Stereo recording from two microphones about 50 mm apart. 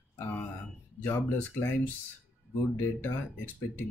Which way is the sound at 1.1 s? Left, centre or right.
Left.